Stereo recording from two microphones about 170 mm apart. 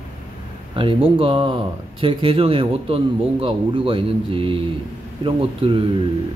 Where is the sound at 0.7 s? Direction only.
30° right (ahead or behind).